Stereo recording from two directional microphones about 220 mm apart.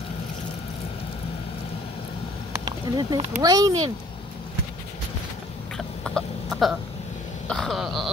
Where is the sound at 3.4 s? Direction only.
15° right (ahead or behind).